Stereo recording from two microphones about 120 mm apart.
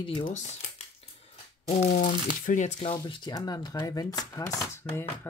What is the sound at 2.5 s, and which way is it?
Speech, 80° left.